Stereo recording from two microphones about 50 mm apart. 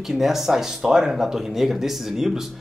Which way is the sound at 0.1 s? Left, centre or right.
Centre.